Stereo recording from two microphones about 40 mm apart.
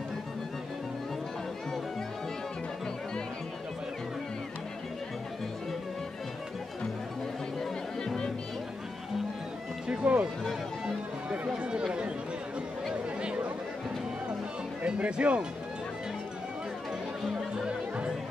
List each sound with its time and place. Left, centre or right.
10.0 s a sound: right
11.5 s run: right
14.8 s speech: right
17.6 s music: right